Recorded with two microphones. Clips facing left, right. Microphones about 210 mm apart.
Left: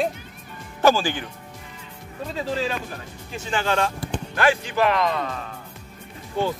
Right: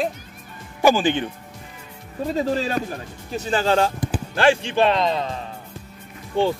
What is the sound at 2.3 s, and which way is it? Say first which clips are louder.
Speech: right 3 dB; 40° right (ahead or behind).